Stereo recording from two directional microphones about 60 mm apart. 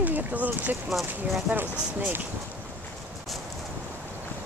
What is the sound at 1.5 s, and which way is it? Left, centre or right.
Speech, right.